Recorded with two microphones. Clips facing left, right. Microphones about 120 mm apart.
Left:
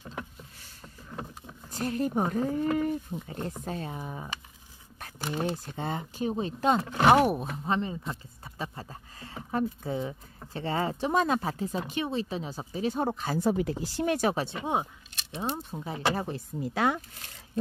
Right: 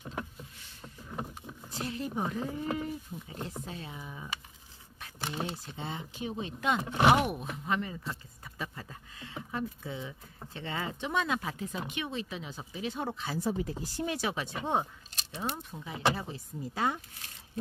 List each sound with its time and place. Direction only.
1.7 s speech: 45° left (ahead or behind)
5.3 s speech: 45° left (ahead or behind)
13.5 s speech: 70° left (ahead or behind)
14.1 s speech: 45° left (ahead or behind)
14.6 s speech: 10° left (ahead or behind)
15.7 s speech: 35° left (ahead or behind)
16.3 s speech: 65° left (ahead or behind)